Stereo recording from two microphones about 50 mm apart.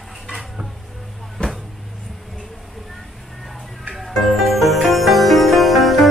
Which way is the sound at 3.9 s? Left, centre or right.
Centre.